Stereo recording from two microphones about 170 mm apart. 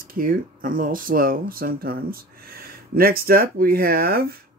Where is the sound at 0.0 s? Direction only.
55° right (ahead or behind).